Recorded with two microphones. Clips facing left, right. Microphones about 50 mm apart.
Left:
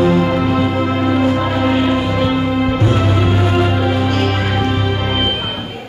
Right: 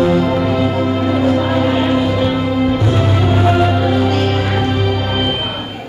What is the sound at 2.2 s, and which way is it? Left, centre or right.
Music, left.